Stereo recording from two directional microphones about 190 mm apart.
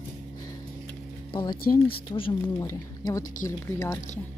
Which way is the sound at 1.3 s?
25° left (ahead or behind).